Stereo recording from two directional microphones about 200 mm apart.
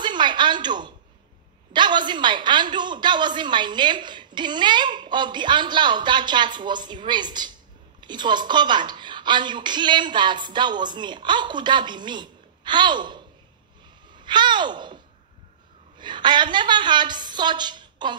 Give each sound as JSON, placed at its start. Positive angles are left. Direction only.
{"t": 0.0, "sound": "a sound", "side_deg": -20}
{"t": 1.7, "sound": "a woman's voice", "side_deg": -20}
{"t": 16.0, "sound": "a woman's voice", "side_deg": -20}